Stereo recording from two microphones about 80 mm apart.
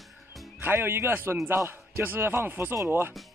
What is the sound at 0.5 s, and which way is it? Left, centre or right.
Speech, right.